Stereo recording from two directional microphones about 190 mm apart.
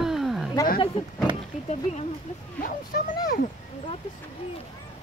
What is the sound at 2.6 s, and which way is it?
Speech, 50° left (ahead or behind).